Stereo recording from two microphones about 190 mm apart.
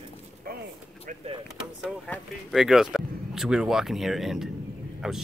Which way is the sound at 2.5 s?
Centre (ahead or behind).